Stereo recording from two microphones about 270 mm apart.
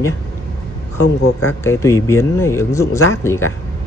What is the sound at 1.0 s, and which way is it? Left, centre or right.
Speech, left.